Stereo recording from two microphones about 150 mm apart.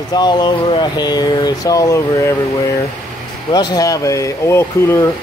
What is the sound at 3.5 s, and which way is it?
Speech, 30° left (ahead or behind).